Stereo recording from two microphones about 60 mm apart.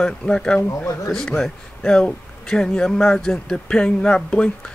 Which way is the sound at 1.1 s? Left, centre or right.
Centre.